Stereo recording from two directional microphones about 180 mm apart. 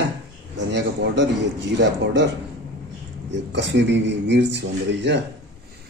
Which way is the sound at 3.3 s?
80° right.